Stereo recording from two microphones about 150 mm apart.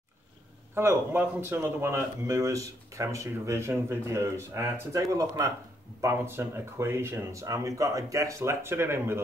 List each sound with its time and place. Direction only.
0.7 s speech: 15° right (ahead or behind)